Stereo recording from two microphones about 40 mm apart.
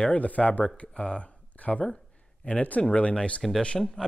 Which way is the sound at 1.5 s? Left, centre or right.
Left.